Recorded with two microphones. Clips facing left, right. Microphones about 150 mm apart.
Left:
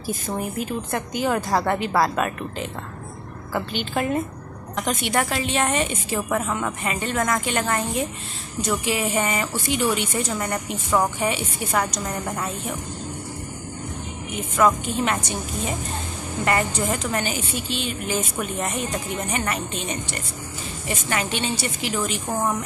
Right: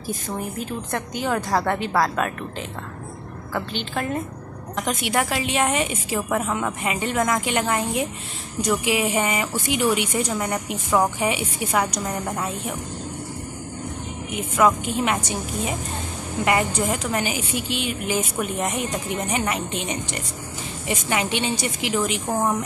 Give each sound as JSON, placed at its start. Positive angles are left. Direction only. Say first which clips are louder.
{"t": 0.6, "sound": "a woman's voice", "louder": "left 2 dB", "side_deg": 5}
{"t": 3.5, "sound": "a woman's voice", "louder": "left 2 dB", "side_deg": 5}
{"t": 4.8, "sound": "a woman's voice", "louder": "even", "side_deg": -10}
{"t": 14.3, "sound": "a woman's voice", "louder": "even", "side_deg": -10}